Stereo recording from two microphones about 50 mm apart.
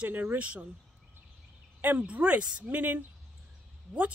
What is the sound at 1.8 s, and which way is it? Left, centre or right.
Speech, right.